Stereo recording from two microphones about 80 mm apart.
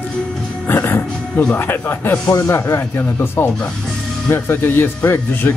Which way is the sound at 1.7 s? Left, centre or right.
Left.